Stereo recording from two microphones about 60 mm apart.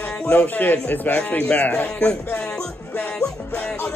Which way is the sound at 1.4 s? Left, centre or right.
Centre.